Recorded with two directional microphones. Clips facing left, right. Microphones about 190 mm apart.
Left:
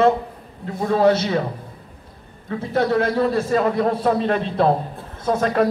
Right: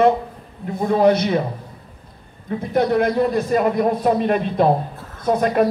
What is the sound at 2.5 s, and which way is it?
A man's voice, 15° right (ahead or behind).